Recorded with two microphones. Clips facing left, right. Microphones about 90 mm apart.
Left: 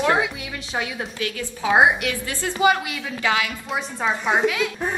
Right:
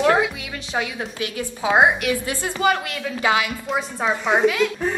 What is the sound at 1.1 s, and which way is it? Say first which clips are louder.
A woman's voice: right 1 dB; 25° right (ahead or behind).